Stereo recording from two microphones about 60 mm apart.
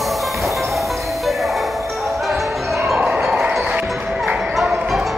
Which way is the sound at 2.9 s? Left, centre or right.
Centre.